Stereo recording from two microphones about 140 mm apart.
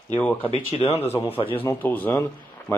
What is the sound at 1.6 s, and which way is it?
Speech, 10° left (ahead or behind).